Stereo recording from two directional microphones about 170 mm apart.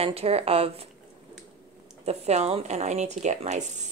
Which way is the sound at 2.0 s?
40° right (ahead or behind).